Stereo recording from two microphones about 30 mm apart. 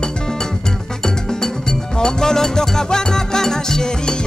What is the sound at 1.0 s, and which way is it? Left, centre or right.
Music, centre.